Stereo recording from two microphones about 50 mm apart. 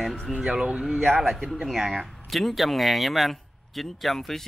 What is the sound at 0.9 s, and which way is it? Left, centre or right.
Speech, centre.